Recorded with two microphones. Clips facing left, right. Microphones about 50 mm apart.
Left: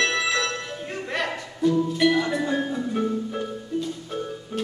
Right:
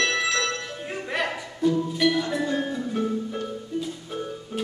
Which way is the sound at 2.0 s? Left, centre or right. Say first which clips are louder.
Left 2 dB; centre.